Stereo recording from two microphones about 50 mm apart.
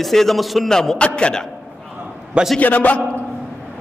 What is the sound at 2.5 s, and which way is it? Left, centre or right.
Speech, left.